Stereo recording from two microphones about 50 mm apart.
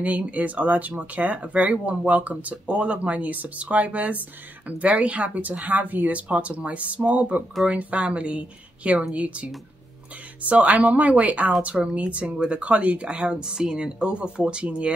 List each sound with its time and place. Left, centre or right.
0.0 s speech: right